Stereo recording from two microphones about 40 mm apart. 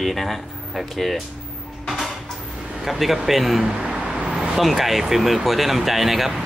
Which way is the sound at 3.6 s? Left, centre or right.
Centre.